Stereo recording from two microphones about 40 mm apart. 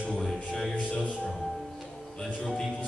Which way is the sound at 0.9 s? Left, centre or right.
Left.